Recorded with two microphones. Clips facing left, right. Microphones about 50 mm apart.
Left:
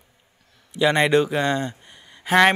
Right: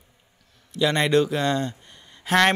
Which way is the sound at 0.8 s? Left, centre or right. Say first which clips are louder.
Left 2 dB; centre.